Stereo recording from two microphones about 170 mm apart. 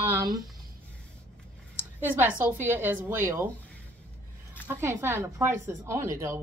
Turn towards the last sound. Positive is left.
turn(degrees=-15)  # may be behind; listen again after turning